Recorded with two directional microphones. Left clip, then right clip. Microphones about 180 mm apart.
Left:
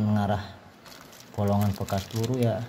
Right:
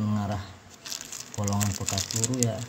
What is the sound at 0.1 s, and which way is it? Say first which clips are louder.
Shuffling cards: left 5 dB; 20° left (ahead or behind).